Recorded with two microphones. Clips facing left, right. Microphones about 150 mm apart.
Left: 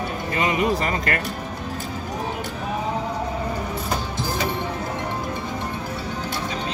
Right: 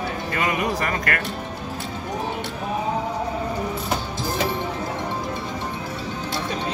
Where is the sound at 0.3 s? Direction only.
20° left (ahead or behind).